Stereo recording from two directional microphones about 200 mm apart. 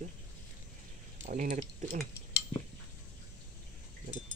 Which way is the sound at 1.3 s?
40° right (ahead or behind).